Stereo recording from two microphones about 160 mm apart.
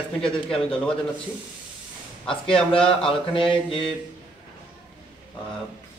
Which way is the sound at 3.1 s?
35° left (ahead or behind).